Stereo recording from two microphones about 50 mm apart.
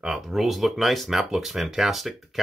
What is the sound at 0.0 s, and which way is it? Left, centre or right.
Speech, centre.